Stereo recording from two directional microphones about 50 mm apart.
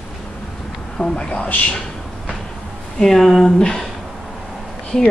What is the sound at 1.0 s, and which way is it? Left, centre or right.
Speech, centre.